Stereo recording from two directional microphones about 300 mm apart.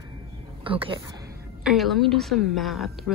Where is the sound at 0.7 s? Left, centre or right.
Centre.